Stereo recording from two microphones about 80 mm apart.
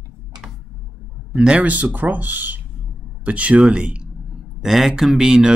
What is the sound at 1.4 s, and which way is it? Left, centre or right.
Speech, centre.